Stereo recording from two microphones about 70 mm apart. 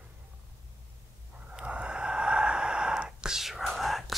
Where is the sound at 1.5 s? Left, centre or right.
Centre.